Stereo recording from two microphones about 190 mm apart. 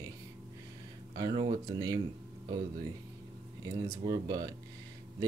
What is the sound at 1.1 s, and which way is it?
Speech, 25° right (ahead or behind).